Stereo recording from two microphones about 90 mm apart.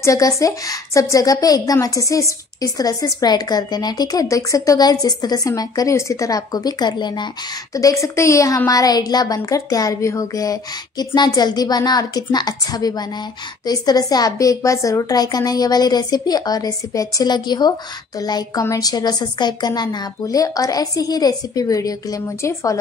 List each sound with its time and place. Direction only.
0.0 s a woman's voice: 35° left (ahead or behind); by 7.2 s 55° left (ahead or behind)
7.7 s a woman's voice: 35° left (ahead or behind)